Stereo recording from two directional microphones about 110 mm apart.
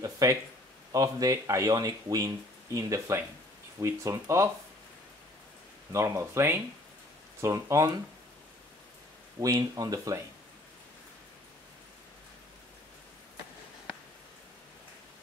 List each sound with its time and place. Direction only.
0.0 s a sound: 30° right (ahead or behind)
0.9 s speech: 30° right (ahead or behind)
5.9 s speech: 25° right (ahead or behind)
9.4 s speech: 30° right (ahead or behind)